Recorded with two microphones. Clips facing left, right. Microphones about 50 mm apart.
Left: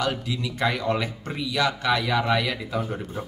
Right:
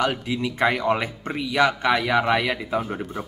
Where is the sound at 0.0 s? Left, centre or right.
Right.